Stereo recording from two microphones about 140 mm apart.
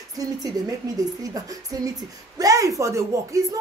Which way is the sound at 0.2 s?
25° right (ahead or behind).